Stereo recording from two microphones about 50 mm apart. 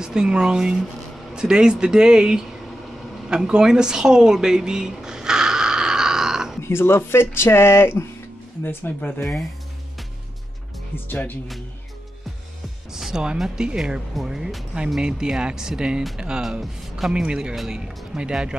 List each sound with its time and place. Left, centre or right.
0.0 s speech: centre
3.3 s a sound: centre
6.6 s speech: left
8.6 s speech: left
9.2 s speech: centre
12.9 s speech: centre